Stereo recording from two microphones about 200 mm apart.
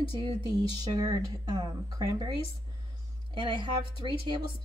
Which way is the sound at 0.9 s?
15° right (ahead or behind).